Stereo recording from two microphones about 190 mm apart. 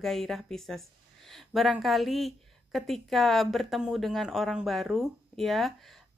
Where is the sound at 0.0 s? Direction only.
Centre (ahead or behind).